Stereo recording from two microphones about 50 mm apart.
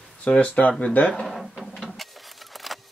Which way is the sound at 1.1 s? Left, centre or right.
Centre.